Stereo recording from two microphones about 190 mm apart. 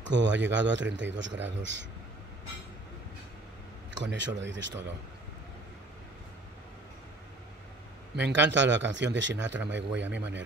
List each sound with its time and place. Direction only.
0.0 s a man's voice: 70° right (ahead or behind)
3.9 s a man's voice: 70° right (ahead or behind)
8.2 s a man's voice: 65° right (ahead or behind)